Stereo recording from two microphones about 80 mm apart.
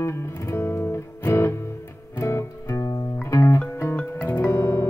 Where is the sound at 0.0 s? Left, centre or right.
Left.